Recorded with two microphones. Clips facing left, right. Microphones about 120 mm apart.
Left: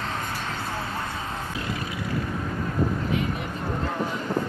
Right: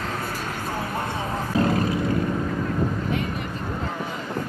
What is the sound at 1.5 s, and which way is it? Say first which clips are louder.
Vehicle: right 10 dB; 45° right (ahead or behind).